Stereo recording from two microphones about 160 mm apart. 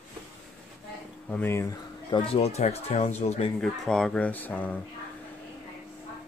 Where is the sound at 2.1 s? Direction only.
35° left (ahead or behind).